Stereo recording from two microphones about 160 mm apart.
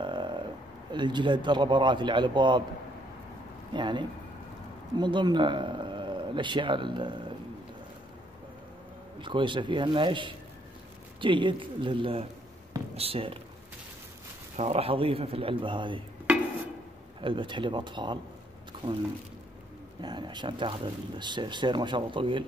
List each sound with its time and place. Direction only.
0.0 s a sound: 30° right (ahead or behind)
0.9 s speech: 30° right (ahead or behind)
3.7 s speech: 30° right (ahead or behind)
9.2 s speech: 30° right (ahead or behind)
14.6 s speech: 40° right (ahead or behind)
17.2 s speech: 30° right (ahead or behind)
20.0 s speech: 30° right (ahead or behind)